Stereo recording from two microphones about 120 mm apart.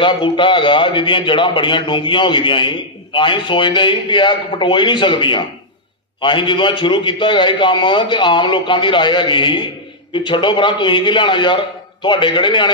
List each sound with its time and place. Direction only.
0.0 s a man's voice: 45° left (ahead or behind)